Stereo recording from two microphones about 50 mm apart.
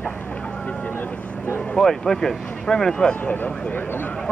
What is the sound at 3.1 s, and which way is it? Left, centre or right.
Speech, left.